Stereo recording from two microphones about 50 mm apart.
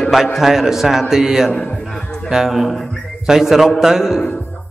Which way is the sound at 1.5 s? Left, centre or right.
Left.